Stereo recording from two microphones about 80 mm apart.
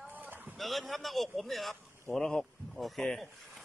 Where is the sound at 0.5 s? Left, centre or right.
Centre.